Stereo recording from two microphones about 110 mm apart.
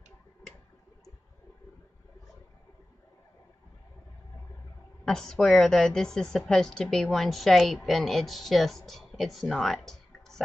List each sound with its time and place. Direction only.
5.0 s a woman's voice: 5° left (ahead or behind)